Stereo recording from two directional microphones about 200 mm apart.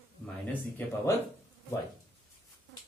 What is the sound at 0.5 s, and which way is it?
Speech, 10° left (ahead or behind).